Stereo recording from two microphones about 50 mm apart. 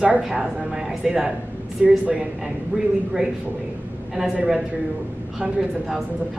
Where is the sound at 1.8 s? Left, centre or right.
Right.